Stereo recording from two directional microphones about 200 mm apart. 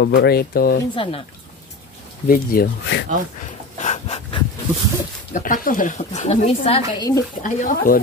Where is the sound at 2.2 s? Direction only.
45° left (ahead or behind).